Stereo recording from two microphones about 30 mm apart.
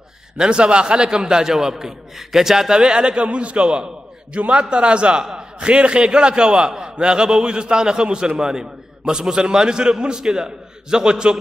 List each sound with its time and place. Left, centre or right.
0.4 s a man's voice: right
3.3 s a man's voice: right